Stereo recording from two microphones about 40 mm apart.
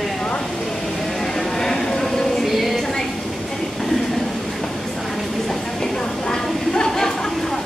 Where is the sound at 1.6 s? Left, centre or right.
Centre.